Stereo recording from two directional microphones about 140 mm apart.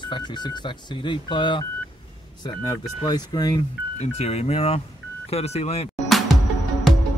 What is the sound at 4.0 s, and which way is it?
Speech, 50° left (ahead or behind).